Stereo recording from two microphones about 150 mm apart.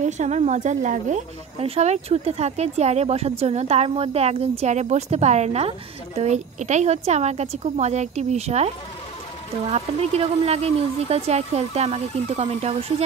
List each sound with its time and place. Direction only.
0.0 s speech: 50° right (ahead or behind)
1.6 s speech: 45° right (ahead or behind)